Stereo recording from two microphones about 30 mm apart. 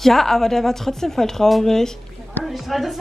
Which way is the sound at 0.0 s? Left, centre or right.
Centre.